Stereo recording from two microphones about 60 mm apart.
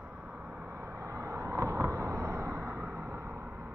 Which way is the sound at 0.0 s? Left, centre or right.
Right.